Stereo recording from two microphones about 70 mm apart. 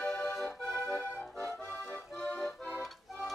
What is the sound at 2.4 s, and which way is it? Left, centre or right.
Accordion, left.